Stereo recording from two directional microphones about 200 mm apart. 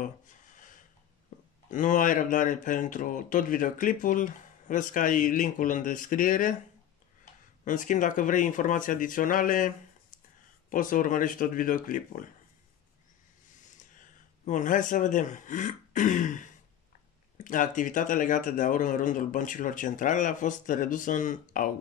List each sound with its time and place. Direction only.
0.0 s a sound: 40° left (ahead or behind)
1.7 s speech: 40° left (ahead or behind)
7.6 s speech: 40° left (ahead or behind)
10.7 s speech: 40° left (ahead or behind)
13.7 s a man's voice: 40° left (ahead or behind)